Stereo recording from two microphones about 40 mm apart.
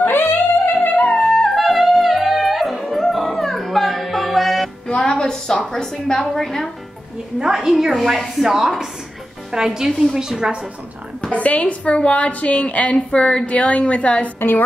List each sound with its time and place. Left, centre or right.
0.0 s music: left
0.9 s music: left
1.5 s music: centre
4.8 s music: left
5.8 s a woman's voice: centre
6.3 s a woman's voice: centre
7.3 s a woman's voice: centre
11.3 s a woman's voice: left
14.4 s a woman's voice: left